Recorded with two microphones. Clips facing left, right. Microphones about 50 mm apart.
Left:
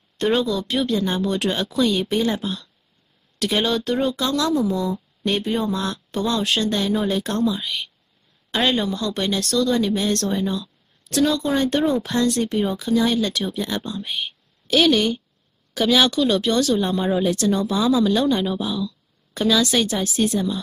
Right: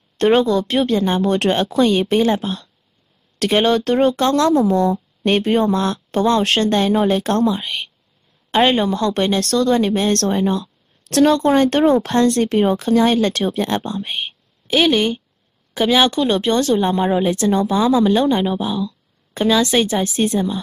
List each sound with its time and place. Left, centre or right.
0.2 s a woman's voice: right
14.7 s a woman's voice: right